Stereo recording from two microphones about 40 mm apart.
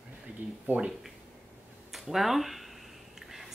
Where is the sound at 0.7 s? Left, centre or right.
Right.